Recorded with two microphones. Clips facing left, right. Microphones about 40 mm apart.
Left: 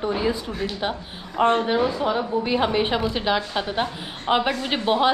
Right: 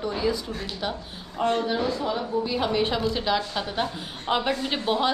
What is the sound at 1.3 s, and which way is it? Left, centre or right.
A woman's voice, left.